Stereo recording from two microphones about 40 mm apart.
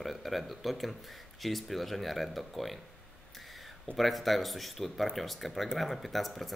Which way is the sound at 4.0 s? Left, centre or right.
Centre.